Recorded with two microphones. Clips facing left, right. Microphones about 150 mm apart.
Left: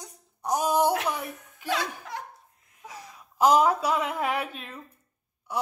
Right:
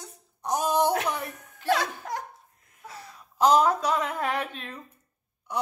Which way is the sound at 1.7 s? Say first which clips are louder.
Right 4 dB; 45° right (ahead or behind).